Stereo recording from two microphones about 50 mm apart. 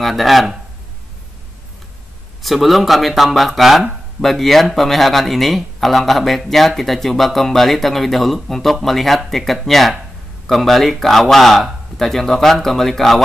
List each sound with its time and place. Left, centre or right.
0.0 s speech: centre
2.4 s speech: centre